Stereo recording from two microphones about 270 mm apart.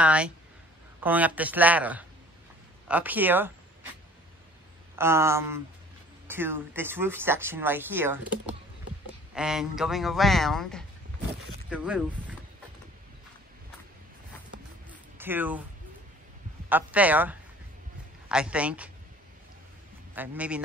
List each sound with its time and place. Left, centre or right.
0.0 s a woman's voice: centre
4.9 s speech: centre
14.9 s a sound: centre
16.6 s speech: centre
20.2 s speech: centre